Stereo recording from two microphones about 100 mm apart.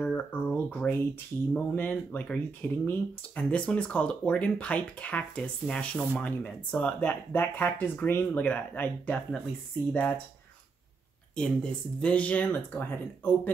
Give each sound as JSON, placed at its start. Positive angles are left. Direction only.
{"t": 0.0, "sound": "speech", "side_deg": 20}
{"t": 11.3, "sound": "speech", "side_deg": 10}